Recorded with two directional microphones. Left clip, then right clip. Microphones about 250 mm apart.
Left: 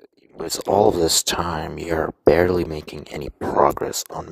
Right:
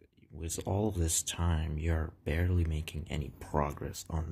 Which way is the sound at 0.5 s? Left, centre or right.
Left.